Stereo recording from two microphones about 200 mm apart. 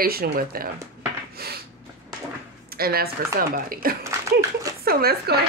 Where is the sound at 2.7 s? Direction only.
50° right (ahead or behind).